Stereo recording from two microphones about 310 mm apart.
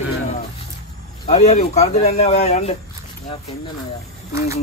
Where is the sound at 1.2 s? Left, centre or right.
Centre.